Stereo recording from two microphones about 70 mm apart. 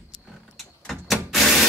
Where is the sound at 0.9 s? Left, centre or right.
Centre.